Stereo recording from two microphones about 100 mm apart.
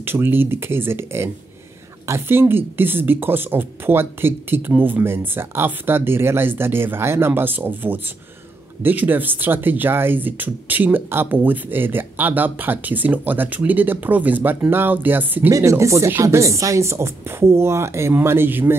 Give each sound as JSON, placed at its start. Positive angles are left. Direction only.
{"t": 0.0, "sound": "speech", "side_deg": -20}
{"t": 15.5, "sound": "speech", "side_deg": -30}